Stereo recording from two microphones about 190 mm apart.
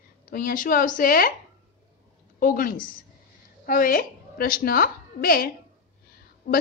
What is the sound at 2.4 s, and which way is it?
A woman's voice, 50° left (ahead or behind).